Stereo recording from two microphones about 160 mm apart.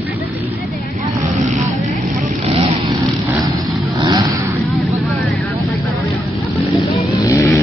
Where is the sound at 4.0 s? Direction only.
25° right (ahead or behind).